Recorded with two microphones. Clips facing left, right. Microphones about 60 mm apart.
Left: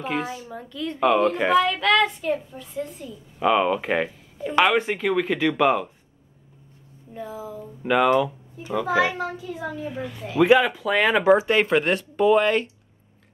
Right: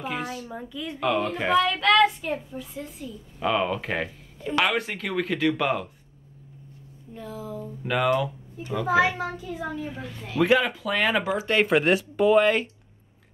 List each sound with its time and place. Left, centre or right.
0.0 s a child's voice: centre
0.5 s a woman's voice: centre
0.9 s a child's voice: centre
3.3 s speech: centre
7.2 s a child's voice: centre